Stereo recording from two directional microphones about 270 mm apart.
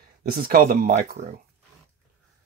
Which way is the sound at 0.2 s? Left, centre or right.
Right.